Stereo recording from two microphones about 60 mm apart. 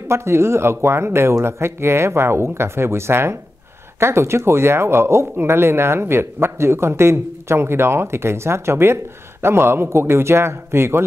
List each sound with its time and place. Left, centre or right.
0.1 s a man's voice: right